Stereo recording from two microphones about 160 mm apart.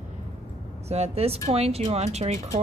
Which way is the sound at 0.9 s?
40° right (ahead or behind).